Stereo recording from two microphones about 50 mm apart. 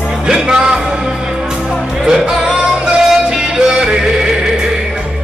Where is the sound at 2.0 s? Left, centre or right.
Centre.